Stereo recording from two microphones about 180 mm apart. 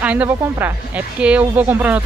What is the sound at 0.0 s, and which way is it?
Speech, 10° right (ahead or behind).